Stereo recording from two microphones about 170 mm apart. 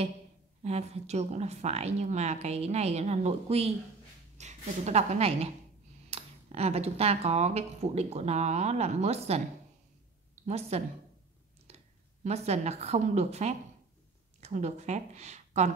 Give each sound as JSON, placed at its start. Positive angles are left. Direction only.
{"t": 0.7, "sound": "speech", "side_deg": -40}
{"t": 10.4, "sound": "a woman's voice", "side_deg": -35}